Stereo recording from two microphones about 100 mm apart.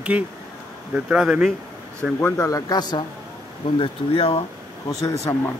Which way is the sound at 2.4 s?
40° left (ahead or behind).